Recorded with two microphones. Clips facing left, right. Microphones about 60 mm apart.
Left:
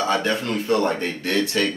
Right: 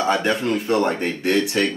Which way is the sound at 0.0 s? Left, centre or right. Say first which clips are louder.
Right 2 dB; right.